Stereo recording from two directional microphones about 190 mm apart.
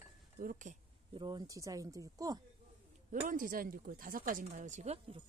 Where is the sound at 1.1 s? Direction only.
25° right (ahead or behind).